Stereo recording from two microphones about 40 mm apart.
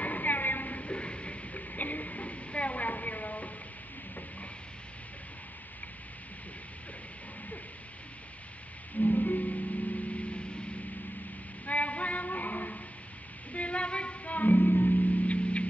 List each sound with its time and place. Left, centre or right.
0.0 s a sound: left
9.0 s music: left
11.6 s female singing: left
13.5 s music: left